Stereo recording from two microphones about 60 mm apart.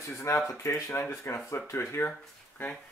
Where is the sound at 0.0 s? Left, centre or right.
Left.